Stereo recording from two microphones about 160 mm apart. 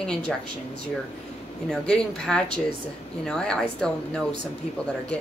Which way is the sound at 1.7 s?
5° left (ahead or behind).